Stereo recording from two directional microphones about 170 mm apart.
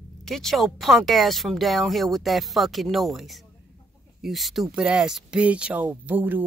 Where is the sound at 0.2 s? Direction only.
Centre (ahead or behind).